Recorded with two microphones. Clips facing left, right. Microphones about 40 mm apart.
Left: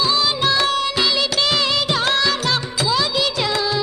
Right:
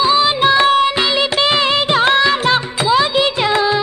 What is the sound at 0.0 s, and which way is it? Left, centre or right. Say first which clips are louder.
Music: right 6 dB; right.